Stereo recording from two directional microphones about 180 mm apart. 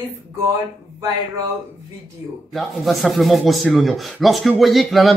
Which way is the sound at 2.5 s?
Centre (ahead or behind).